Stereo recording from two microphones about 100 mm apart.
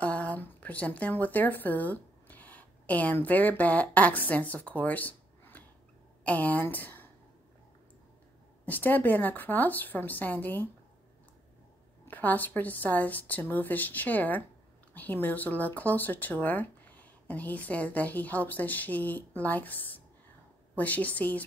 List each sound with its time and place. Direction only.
0.0 s a woman's voice: 15° left (ahead or behind)
8.6 s speech: 15° left (ahead or behind)
12.1 s speech: 15° left (ahead or behind)